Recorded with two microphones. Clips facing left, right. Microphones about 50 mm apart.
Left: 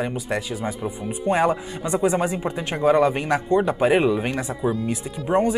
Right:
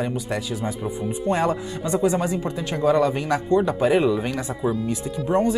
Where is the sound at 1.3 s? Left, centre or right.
Centre.